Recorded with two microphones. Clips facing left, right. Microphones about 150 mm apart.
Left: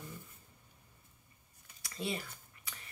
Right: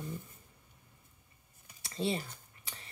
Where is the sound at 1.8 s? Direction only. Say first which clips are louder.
Right 5 dB; 30° right (ahead or behind).